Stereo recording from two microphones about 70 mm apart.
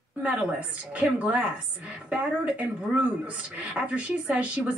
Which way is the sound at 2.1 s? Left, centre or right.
Right.